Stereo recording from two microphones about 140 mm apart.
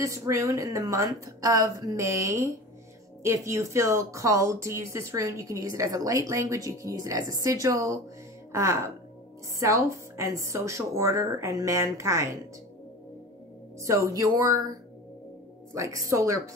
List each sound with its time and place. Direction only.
0.0 s a woman's voice: 20° right (ahead or behind)
13.7 s a woman's voice: 20° right (ahead or behind)